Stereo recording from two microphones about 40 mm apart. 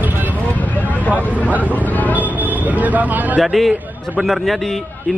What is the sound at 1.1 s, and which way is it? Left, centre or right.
Speech, right.